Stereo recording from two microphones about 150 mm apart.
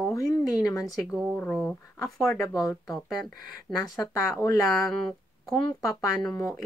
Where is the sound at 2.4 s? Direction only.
20° left (ahead or behind).